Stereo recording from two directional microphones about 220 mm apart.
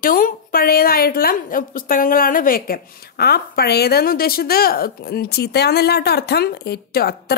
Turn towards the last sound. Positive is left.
turn(degrees=45)  # may be behind; listen again after turning